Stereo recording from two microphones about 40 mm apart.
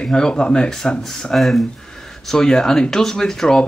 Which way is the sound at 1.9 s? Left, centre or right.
Centre.